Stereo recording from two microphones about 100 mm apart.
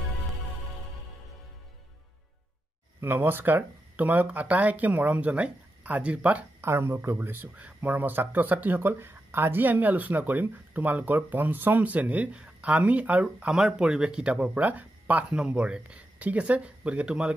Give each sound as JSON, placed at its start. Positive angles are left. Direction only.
{"t": 3.0, "sound": "speech", "side_deg": -20}
{"t": 6.6, "sound": "speech", "side_deg": -25}